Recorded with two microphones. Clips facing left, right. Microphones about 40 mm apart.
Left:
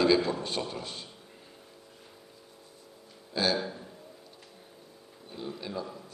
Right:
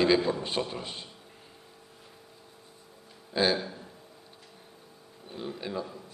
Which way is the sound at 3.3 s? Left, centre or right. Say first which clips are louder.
Right 3 dB; right.